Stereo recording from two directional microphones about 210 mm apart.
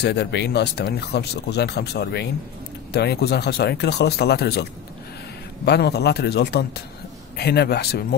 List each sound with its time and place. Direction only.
0.0 s speech: 55° left (ahead or behind)
5.7 s speech: 50° left (ahead or behind)